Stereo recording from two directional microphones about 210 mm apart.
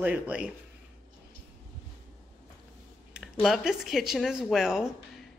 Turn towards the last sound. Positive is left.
turn(degrees=0)  # may be behind; listen again after turning